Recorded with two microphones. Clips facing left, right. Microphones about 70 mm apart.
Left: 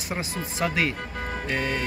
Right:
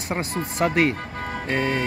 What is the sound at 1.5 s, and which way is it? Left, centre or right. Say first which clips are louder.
Speech: right 5 dB; right.